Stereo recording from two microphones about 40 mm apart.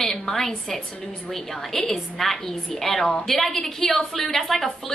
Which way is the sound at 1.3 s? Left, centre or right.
Centre.